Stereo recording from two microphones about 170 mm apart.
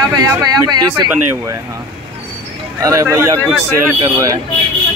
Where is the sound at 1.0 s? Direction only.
10° right (ahead or behind).